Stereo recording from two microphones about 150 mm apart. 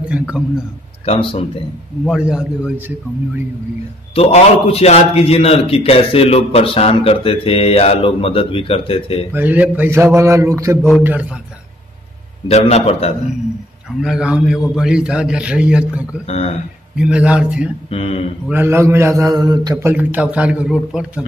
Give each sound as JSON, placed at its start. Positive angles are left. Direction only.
{"t": 1.0, "sound": "a man's voice", "side_deg": 40}
{"t": 2.0, "sound": "a man's voice", "side_deg": -5}
{"t": 4.1, "sound": "a man's voice", "side_deg": 40}
{"t": 9.3, "sound": "a man's voice", "side_deg": -10}
{"t": 12.4, "sound": "a man's voice", "side_deg": 45}
{"t": 14.0, "sound": "a man's voice", "side_deg": -5}
{"t": 16.3, "sound": "a man's voice", "side_deg": 45}
{"t": 16.9, "sound": "a man's voice", "side_deg": -5}
{"t": 17.8, "sound": "a man's voice", "side_deg": 40}
{"t": 18.5, "sound": "a man's voice", "side_deg": -15}